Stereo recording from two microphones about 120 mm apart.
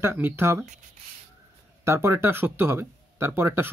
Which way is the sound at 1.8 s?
20° right (ahead or behind).